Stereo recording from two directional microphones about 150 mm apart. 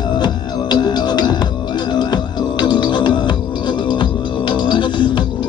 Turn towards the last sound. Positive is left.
turn(degrees=30)  # may be behind; listen again after turning